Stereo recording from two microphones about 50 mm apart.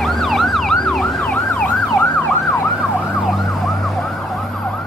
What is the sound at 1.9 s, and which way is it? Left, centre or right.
Emergency vehicle, left.